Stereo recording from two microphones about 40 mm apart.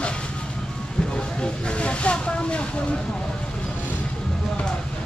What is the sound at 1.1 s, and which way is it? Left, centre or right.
Vehicle, left.